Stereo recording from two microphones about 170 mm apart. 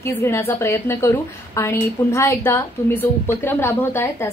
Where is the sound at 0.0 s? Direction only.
15° left (ahead or behind).